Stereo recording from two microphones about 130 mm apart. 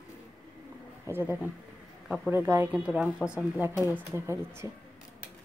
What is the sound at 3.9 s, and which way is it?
Speech, 20° right (ahead or behind).